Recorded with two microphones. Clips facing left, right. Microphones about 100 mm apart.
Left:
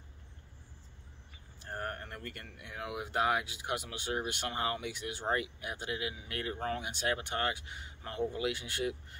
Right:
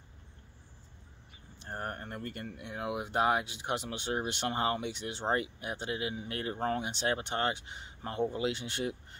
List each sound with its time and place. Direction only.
1.6 s speech: 25° right (ahead or behind)